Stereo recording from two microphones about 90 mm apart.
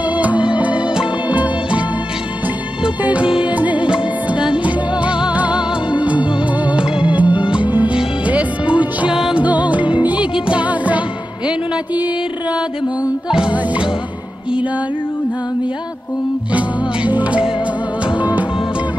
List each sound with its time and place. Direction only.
0.1 s music: 15° right (ahead or behind)
13.3 s music: 10° right (ahead or behind)
16.5 s music: 15° right (ahead or behind)